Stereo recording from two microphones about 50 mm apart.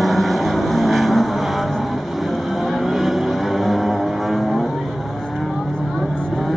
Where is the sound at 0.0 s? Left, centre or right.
Centre.